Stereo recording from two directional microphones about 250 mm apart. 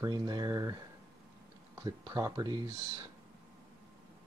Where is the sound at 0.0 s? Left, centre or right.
Centre.